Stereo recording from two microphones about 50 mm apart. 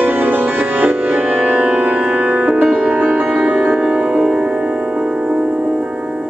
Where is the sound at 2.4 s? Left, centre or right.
Right.